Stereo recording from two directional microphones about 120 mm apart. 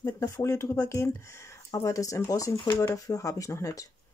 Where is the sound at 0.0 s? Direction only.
25° left (ahead or behind).